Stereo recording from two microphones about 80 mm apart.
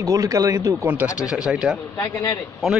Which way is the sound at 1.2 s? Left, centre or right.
Centre.